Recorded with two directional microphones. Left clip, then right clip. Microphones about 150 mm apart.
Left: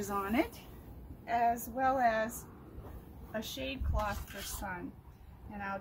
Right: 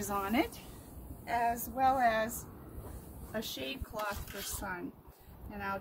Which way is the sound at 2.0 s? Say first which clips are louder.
Right 1 dB; 10° left (ahead or behind).